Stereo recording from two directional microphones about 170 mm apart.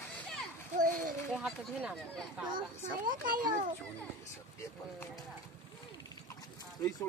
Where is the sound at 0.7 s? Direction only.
50° right (ahead or behind).